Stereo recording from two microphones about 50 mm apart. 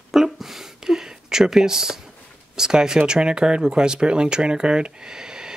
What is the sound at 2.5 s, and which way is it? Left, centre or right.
Speech, centre.